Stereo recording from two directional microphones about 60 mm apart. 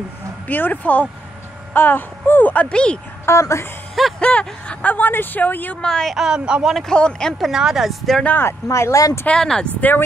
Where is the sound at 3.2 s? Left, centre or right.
Left.